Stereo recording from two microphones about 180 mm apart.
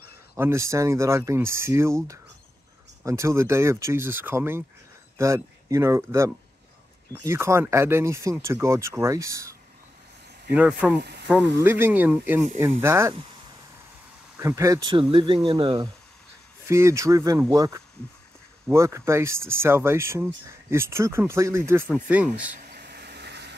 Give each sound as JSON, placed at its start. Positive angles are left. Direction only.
{"t": 0.4, "sound": "speech", "side_deg": -15}
{"t": 10.5, "sound": "speech", "side_deg": -10}
{"t": 11.0, "sound": "speech", "side_deg": -65}
{"t": 11.6, "sound": "speech", "side_deg": -10}
{"t": 14.3, "sound": "speech", "side_deg": -15}
{"t": 22.7, "sound": "vehicle", "side_deg": -65}